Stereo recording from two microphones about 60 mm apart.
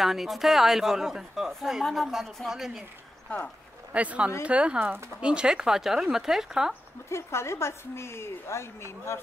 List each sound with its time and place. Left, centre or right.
0.0 s a woman's voice: centre
3.9 s speech: right
5.2 s speech: centre
7.1 s a woman's voice: left